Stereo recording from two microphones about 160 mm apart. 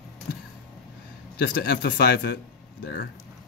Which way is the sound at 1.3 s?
70° left (ahead or behind).